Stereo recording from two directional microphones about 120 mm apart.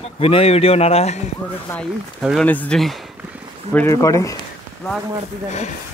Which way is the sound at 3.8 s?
25° left (ahead or behind).